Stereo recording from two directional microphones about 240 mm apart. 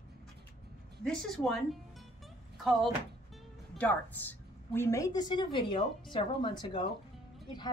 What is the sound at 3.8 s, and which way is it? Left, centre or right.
A woman's voice, centre.